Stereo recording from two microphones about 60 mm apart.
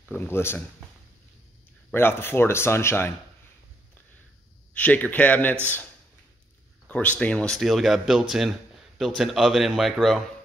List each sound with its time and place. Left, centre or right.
0.1 s speech: left
2.0 s speech: left
4.7 s a man's voice: left
6.9 s a man's voice: left
7.5 s a man's voice: centre